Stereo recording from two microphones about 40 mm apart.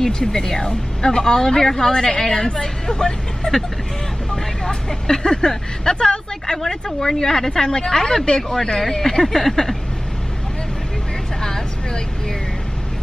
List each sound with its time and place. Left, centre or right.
0.0 s speech: centre
4.6 s speech: centre
9.4 s a sound: centre
11.4 s vehicle: centre